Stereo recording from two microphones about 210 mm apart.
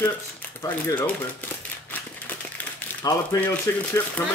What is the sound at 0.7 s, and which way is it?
Speech, 10° left (ahead or behind).